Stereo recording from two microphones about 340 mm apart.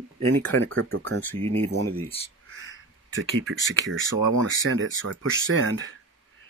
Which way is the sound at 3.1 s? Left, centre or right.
Right.